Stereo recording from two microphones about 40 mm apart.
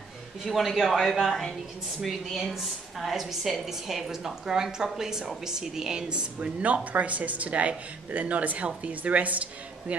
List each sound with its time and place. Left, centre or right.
0.5 s speech: centre
2.5 s a woman's voice: centre; by 6.5 s right
6.6 s speech: right